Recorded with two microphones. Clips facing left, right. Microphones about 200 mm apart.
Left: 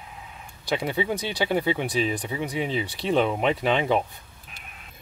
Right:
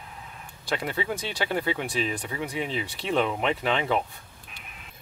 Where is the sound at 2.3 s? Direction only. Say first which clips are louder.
Left 3 dB; 15° left (ahead or behind).